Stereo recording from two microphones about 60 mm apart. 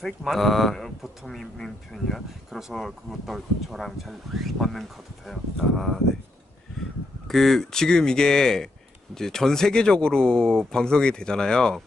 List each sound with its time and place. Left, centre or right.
0.0 s speech: centre
7.2 s speech: centre